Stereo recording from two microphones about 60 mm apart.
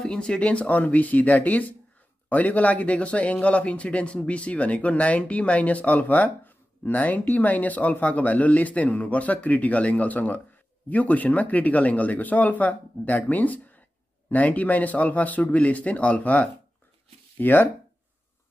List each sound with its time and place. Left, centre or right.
0.0 s speech: centre
17.4 s speech: left